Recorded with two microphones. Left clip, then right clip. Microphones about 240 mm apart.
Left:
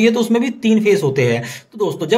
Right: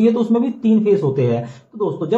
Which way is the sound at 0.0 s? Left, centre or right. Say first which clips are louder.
Left 2 dB; left.